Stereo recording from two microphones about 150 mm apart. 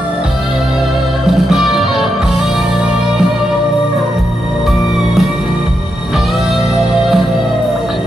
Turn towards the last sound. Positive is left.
turn(degrees=0)  # may be behind; listen again after turning